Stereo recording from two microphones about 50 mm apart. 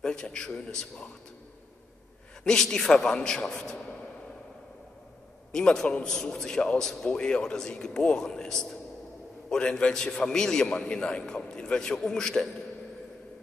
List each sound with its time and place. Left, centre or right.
0.0 s speech: centre
2.4 s speech: centre
5.5 s speech: centre